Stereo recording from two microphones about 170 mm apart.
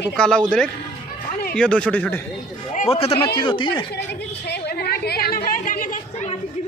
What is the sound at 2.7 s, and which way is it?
A man's voice, 40° left (ahead or behind).